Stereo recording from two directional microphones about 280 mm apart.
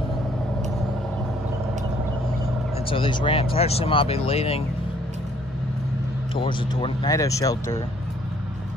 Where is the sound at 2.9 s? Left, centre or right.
Centre.